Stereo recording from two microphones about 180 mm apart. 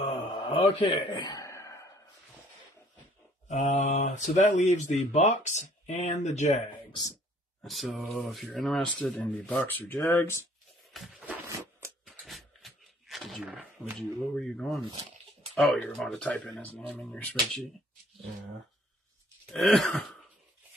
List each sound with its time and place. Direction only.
0.0 s mantra: 30° left (ahead or behind)
3.4 s speech: 35° left (ahead or behind)
7.6 s speech: centre (ahead or behind)
10.9 s a sound: 5° right (ahead or behind)
13.9 s speech: centre (ahead or behind)
19.5 s speech: centre (ahead or behind)